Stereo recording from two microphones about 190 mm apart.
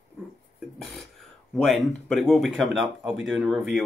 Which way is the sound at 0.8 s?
Centre (ahead or behind).